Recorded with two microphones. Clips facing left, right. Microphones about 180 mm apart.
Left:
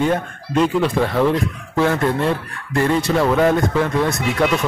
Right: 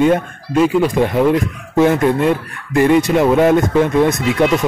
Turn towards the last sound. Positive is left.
turn(degrees=-20)  # may be behind; listen again after turning